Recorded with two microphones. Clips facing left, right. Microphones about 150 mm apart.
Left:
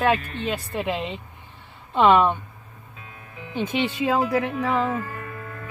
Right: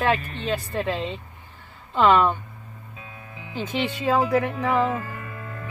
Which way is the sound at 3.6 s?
20° left (ahead or behind).